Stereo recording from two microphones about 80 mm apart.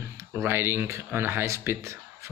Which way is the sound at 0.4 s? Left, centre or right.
Right.